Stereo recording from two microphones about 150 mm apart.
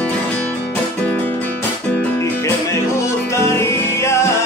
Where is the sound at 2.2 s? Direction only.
20° left (ahead or behind).